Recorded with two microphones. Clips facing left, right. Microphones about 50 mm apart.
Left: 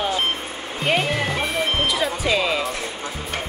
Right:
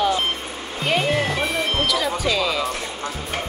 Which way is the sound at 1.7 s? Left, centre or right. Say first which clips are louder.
Right 1 dB; left.